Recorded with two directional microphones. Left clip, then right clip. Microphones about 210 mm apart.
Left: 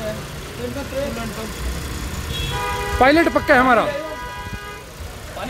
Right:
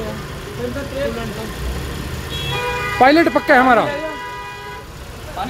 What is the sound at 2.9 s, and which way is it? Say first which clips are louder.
Speech: right 2 dB; 5° left (ahead or behind).